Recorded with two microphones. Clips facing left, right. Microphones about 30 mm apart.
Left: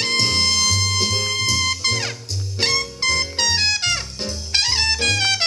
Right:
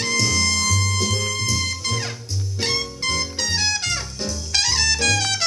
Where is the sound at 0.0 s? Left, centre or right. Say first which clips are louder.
Left 1 dB; left.